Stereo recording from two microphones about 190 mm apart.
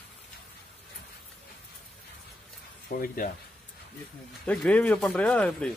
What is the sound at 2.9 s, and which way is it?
Speech, 45° left (ahead or behind).